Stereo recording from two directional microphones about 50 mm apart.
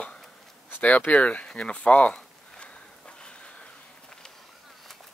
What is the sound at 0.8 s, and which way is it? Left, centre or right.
Speech, left.